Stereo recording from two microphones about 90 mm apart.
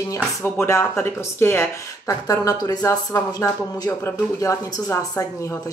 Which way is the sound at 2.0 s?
40° left (ahead or behind).